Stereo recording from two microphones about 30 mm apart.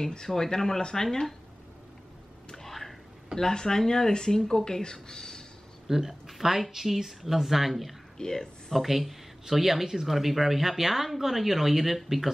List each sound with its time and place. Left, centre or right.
0.3 s speech: centre
2.6 s a sound: centre
3.3 s speech: left
5.9 s speech: centre
8.2 s speech: centre
8.7 s speech: centre